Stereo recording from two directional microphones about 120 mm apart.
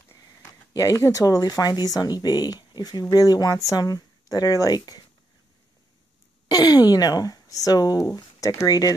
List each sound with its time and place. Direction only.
0.1 s speech: 30° left (ahead or behind)
6.5 s speech: 35° left (ahead or behind)